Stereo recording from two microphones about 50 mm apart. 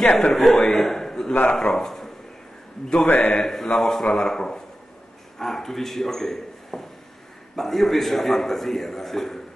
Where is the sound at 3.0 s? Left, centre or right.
Left.